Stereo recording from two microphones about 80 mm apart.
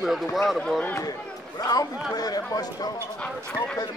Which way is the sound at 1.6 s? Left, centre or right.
Left.